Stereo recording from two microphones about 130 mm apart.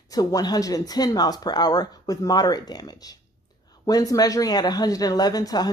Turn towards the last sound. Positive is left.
turn(degrees=30)  # may be behind; listen again after turning